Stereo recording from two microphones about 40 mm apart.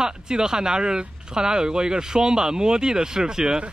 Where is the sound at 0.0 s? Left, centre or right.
Centre.